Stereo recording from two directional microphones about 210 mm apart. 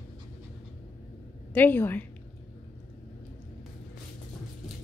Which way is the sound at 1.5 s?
10° left (ahead or behind).